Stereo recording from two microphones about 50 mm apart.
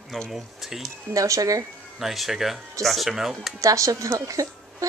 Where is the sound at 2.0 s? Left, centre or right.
Centre.